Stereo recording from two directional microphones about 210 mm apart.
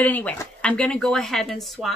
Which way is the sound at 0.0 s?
5° left (ahead or behind).